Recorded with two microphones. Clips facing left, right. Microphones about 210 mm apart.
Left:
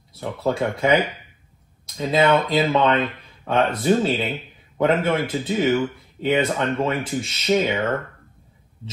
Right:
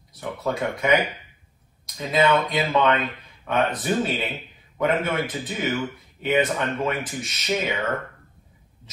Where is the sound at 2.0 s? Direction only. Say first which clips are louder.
Left 2 dB; 30° left (ahead or behind).